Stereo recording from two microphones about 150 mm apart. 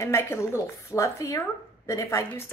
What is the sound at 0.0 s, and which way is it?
A woman's voice, 15° left (ahead or behind).